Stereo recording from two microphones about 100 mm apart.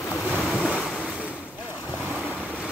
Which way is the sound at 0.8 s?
5° right (ahead or behind).